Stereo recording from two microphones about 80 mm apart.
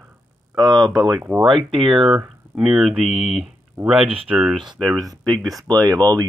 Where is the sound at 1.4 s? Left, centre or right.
Centre.